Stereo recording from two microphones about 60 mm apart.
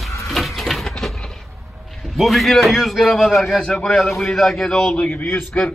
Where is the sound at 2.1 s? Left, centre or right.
Centre.